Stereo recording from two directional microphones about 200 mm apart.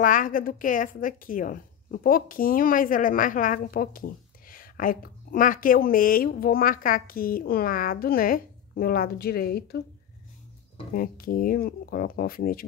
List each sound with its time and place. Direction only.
0.0 s a woman's voice: 40° left (ahead or behind)
11.0 s a woman's voice: 45° left (ahead or behind)